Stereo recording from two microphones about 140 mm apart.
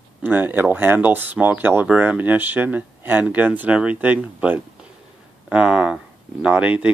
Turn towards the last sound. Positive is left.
turn(degrees=-10)  # may be behind; listen again after turning